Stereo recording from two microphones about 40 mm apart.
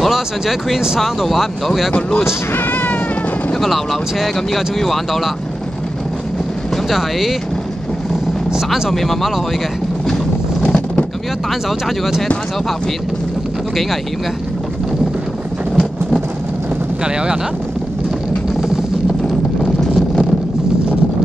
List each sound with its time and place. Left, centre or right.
0.1 s speech: centre
2.0 s speech: centre
2.5 s cat: left
3.5 s speech: centre
6.9 s speech: centre
8.9 s speech: centre
10.6 s vehicle: left
17.0 s speech: right
19.8 s vehicle: centre